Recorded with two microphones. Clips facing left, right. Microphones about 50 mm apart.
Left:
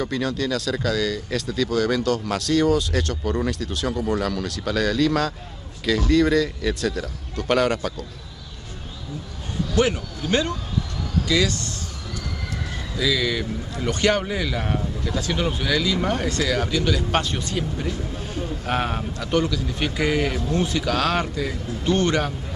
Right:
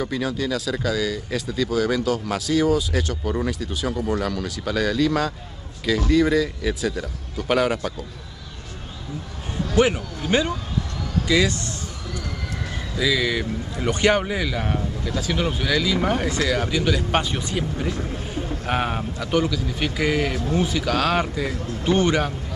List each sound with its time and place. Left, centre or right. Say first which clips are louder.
0.0 s speech: even; centre
9.8 s a man's voice: right 2 dB; centre
12.9 s a man's voice: right 1 dB; centre